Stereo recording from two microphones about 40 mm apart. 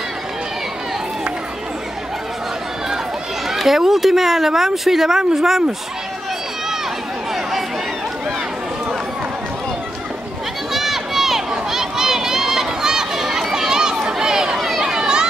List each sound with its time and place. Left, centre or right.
3.4 s speech: centre
10.7 s run: centre
11.5 s a sound: centre